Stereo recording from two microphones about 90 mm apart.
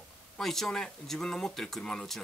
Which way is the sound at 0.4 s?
5° left (ahead or behind).